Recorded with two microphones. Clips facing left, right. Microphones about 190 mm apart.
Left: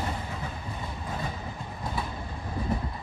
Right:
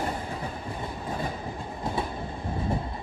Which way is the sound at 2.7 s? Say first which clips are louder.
Left 1 dB; 25° right (ahead or behind).